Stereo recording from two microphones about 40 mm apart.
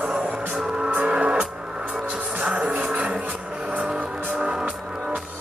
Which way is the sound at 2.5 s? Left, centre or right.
Right.